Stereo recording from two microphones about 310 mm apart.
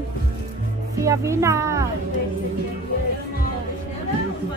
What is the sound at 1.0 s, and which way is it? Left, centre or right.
Speech, centre.